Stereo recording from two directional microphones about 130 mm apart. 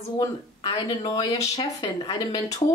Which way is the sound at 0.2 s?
30° left (ahead or behind).